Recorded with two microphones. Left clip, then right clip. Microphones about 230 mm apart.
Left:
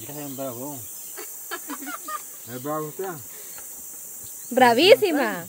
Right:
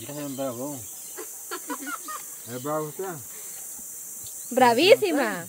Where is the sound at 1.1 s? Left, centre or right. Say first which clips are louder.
Left 1 dB; left.